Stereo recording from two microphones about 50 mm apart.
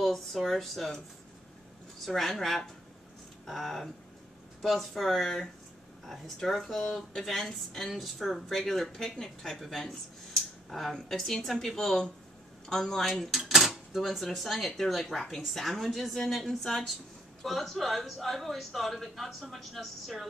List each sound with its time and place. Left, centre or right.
0.0 s a woman's voice: centre